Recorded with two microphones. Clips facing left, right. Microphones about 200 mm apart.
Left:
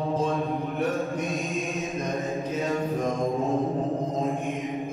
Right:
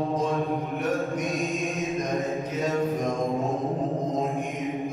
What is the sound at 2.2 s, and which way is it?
Music, centre (ahead or behind).